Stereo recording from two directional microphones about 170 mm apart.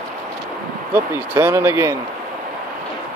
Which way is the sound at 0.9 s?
15° right (ahead or behind).